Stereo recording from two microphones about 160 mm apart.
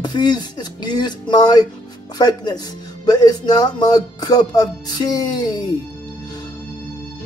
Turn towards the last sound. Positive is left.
turn(degrees=25)  # may be behind; listen again after turning